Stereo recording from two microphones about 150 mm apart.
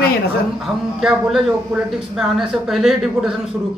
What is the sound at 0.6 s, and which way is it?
A man's voice, centre (ahead or behind).